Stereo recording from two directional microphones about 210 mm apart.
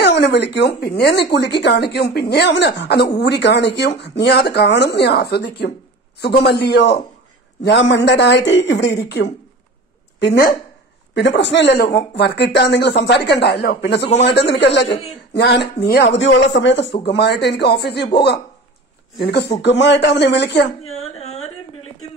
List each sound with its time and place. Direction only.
0.0 s speech: 55° left (ahead or behind)
19.6 s speech: 55° left (ahead or behind)
21.0 s a sound: 30° left (ahead or behind)